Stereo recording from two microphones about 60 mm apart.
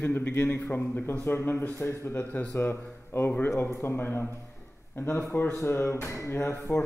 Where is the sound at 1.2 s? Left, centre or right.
Left.